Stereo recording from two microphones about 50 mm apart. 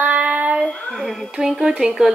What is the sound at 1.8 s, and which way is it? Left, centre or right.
Speech, centre.